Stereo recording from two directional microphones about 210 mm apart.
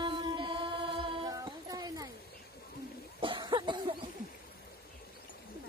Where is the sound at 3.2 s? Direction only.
25° right (ahead or behind).